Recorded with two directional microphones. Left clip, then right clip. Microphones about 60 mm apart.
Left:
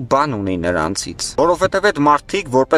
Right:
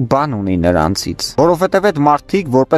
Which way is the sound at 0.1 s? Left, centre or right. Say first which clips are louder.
Even; right.